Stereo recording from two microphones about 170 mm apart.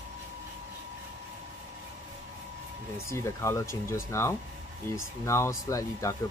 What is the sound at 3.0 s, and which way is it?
Speech, 15° left (ahead or behind).